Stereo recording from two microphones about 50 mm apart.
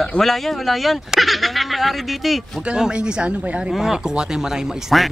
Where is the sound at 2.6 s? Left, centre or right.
Centre.